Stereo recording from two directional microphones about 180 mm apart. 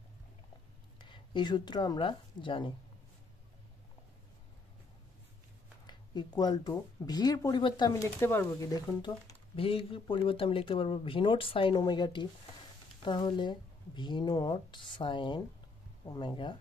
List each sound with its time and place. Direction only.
0.9 s speech: 25° left (ahead or behind)
5.9 s speech: 25° left (ahead or behind)